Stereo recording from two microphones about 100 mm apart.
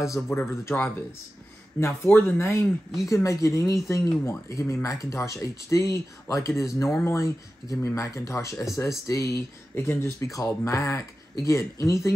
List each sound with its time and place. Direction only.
0.1 s speech: 25° left (ahead or behind)